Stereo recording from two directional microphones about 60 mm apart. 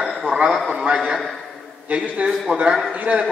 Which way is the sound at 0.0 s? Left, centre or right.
Centre.